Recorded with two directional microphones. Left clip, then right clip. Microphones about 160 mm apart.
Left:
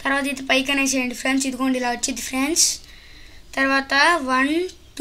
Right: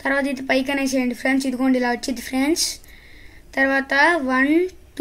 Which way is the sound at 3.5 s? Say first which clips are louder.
Right 1 dB; 50° right (ahead or behind).